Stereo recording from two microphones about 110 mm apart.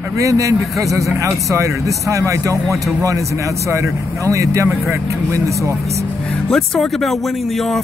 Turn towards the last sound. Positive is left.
turn(degrees=0)  # may be behind; listen again after turning